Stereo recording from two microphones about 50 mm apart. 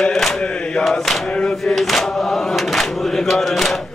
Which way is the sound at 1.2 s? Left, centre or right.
Left.